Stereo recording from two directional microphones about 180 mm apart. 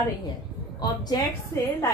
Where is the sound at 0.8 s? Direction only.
20° left (ahead or behind).